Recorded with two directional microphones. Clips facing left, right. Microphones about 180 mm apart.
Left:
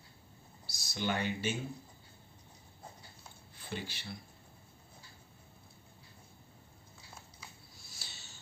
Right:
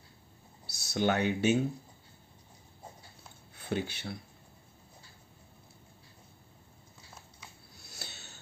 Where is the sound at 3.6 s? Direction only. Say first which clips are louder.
Right 8 dB; 65° right (ahead or behind).